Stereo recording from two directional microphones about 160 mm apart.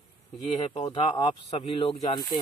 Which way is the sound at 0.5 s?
35° left (ahead or behind).